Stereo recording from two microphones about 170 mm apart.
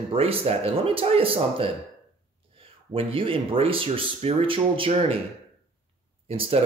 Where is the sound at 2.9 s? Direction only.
30° right (ahead or behind).